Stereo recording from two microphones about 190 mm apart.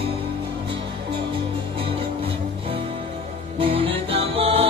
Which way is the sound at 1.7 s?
30° right (ahead or behind).